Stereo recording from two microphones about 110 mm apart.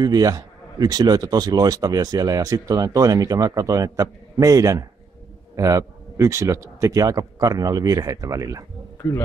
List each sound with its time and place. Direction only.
0.0 s speech: 35° right (ahead or behind)